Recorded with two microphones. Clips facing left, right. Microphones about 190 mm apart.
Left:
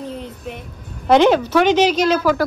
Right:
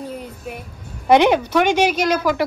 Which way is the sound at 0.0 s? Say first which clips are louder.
Left 1 dB; 10° right (ahead or behind).